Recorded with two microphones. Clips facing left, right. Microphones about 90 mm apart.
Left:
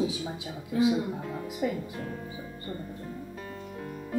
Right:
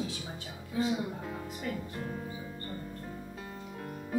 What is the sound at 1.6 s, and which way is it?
Speech, 10° left (ahead or behind).